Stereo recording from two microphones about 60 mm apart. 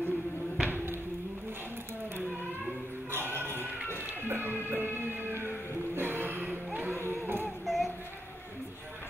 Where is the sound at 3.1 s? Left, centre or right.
Right.